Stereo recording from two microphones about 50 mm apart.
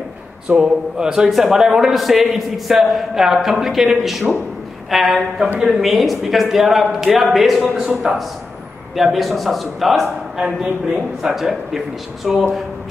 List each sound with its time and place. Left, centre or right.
0.5 s a man's voice: centre
10.3 s speech: centre
11.3 s a man's voice: centre